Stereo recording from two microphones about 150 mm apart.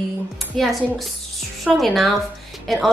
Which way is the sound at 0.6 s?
Centre (ahead or behind).